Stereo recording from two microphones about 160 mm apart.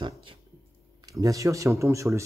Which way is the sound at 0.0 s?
35° right (ahead or behind).